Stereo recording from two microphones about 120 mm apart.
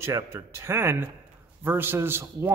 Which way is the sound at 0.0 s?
20° right (ahead or behind).